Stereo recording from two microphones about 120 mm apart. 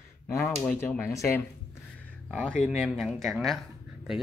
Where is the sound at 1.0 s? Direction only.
20° left (ahead or behind).